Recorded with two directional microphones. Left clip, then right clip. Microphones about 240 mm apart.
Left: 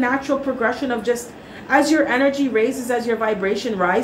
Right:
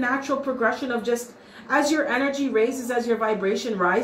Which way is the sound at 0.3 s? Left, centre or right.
Left.